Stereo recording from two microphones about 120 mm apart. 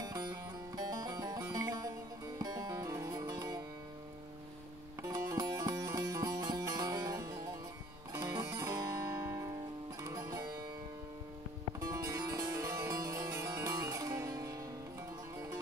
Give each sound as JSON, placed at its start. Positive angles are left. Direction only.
{"t": 0.0, "sound": "music", "side_deg": -35}
{"t": 5.0, "sound": "music", "side_deg": -30}
{"t": 11.8, "sound": "harpsichord", "side_deg": -30}